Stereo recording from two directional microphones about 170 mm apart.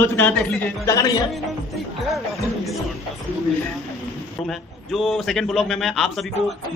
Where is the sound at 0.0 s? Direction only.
10° left (ahead or behind).